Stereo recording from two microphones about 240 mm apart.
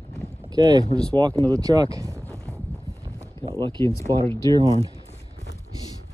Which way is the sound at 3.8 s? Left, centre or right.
Centre.